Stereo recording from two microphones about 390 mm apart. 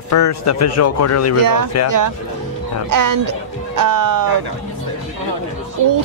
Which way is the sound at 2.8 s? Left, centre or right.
Right.